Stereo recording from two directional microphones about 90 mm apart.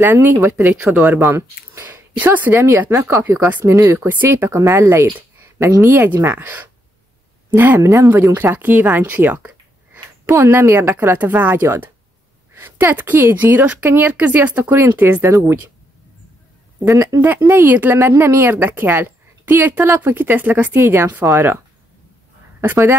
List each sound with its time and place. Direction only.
0.0 s speech: 20° right (ahead or behind)
3.4 s speech: 20° right (ahead or behind)
3.7 s speech: 30° right (ahead or behind)
5.9 s speech: 25° right (ahead or behind)
16.8 s speech: 35° right (ahead or behind)
22.6 s speech: 30° right (ahead or behind)